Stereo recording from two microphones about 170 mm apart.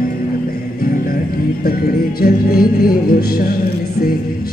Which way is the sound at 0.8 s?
60° left (ahead or behind).